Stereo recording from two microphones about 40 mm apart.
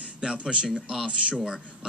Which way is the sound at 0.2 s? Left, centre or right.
Right.